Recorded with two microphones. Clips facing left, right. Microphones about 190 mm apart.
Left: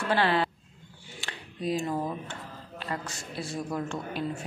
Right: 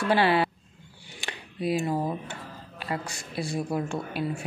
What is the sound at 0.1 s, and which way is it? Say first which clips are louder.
Speech: right 3 dB; 10° right (ahead or behind).